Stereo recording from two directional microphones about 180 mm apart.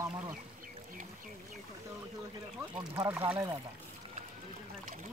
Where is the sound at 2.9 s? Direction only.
15° right (ahead or behind).